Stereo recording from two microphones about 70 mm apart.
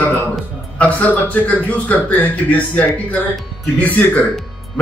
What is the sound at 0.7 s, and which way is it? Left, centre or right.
Speech, left.